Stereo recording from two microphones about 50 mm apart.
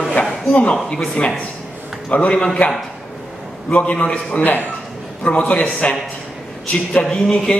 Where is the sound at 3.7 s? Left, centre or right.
Left.